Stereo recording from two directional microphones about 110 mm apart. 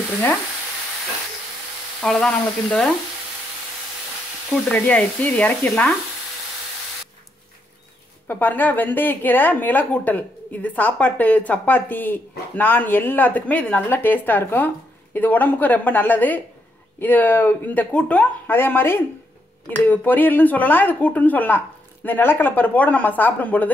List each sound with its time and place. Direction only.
2.0 s frying: 5° left (ahead or behind)
4.6 s speech: 10° left (ahead or behind)
8.3 s speech: 15° left (ahead or behind)